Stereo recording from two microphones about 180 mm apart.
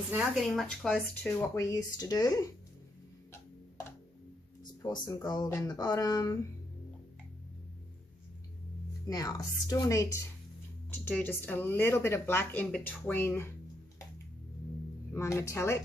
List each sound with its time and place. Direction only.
0.1 s a woman's voice: 5° right (ahead or behind)
1.4 s speech: 15° left (ahead or behind)
4.8 s speech: 25° left (ahead or behind)
9.0 s speech: 20° left (ahead or behind)
15.1 s speech: 15° left (ahead or behind)